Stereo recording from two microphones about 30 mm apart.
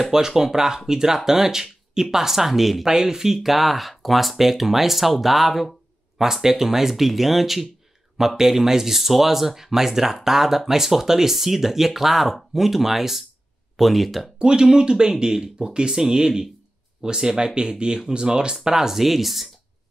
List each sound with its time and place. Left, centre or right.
0.3 s speech: centre
2.8 s speech: centre
6.1 s speech: centre
14.4 s speech: right; by 19.5 s centre